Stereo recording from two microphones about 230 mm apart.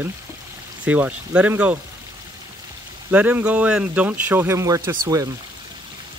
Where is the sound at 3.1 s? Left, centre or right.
Centre.